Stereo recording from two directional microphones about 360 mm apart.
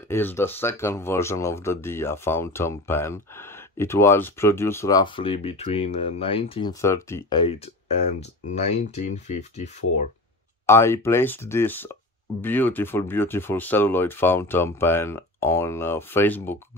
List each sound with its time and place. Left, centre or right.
0.1 s speech: centre
10.7 s speech: centre